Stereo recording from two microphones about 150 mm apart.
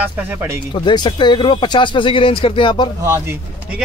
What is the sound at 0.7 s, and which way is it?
Speech, 30° left (ahead or behind).